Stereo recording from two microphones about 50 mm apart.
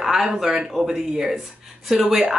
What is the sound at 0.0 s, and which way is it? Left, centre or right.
Speech, centre.